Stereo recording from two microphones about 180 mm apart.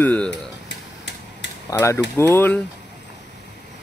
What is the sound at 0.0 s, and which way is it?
Speech, 5° left (ahead or behind).